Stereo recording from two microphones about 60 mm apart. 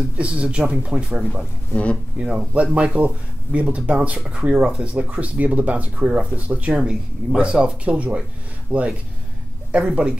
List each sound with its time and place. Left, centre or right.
0.2 s speech: centre